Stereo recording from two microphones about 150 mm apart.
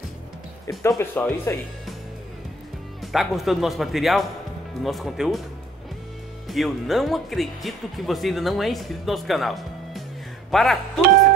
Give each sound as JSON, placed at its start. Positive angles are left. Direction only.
{"t": 0.7, "sound": "speech", "side_deg": 20}
{"t": 3.0, "sound": "speech", "side_deg": 0}
{"t": 6.4, "sound": "speech", "side_deg": 0}